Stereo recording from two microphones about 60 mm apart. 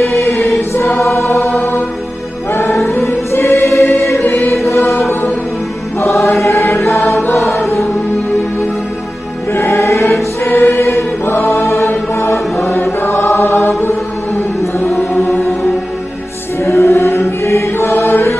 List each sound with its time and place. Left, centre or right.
0.1 s choir: left
2.5 s music: left
3.3 s choir: left
5.9 s music: left
6.2 s choir: left
9.5 s choir: left
11.3 s chant: left
13.0 s choir: left
15.0 s music: left
16.6 s music: left